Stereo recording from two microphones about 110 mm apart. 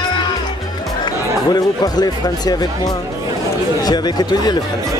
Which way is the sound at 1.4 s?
35° left (ahead or behind).